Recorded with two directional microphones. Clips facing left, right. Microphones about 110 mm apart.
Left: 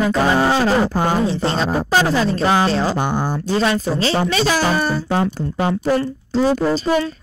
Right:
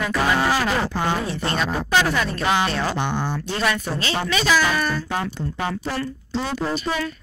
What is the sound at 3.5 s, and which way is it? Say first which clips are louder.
Speech: left 6 dB; 30° left (ahead or behind).